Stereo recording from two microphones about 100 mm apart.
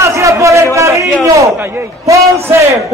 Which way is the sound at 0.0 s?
30° right (ahead or behind).